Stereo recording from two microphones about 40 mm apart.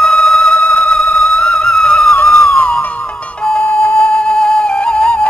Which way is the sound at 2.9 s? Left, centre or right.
Left.